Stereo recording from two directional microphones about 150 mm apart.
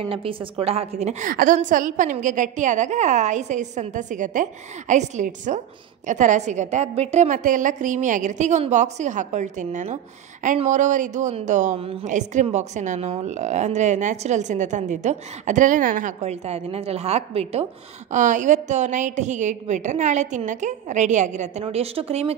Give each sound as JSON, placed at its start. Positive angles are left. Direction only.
{"t": 0.0, "sound": "a woman's voice", "side_deg": -35}
{"t": 1.3, "sound": "a woman's voice", "side_deg": -65}
{"t": 11.8, "sound": "a woman's voice", "side_deg": -40}
{"t": 12.1, "sound": "a woman's voice", "side_deg": -55}
{"t": 16.2, "sound": "a woman's voice", "side_deg": -45}
{"t": 18.1, "sound": "a woman's voice", "side_deg": -55}
{"t": 21.6, "sound": "a woman's voice", "side_deg": -40}